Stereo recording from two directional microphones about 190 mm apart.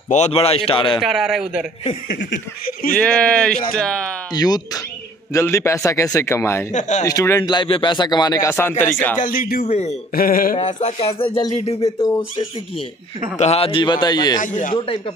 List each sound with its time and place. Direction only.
0.1 s speech: 35° left (ahead or behind)
0.9 s a man's voice: centre (ahead or behind)
2.0 s speech: 60° left (ahead or behind)
3.0 s a man's voice: 5° left (ahead or behind)
4.3 s a man's voice: 20° left (ahead or behind)
6.7 s speech: 40° left (ahead or behind)
7.1 s speech: 15° left (ahead or behind)
9.2 s speech: 50° left (ahead or behind)
9.7 s speech: 35° left (ahead or behind)
10.1 s speech: 50° left (ahead or behind); by 14.4 s 20° left (ahead or behind)
14.4 s speech: 45° left (ahead or behind)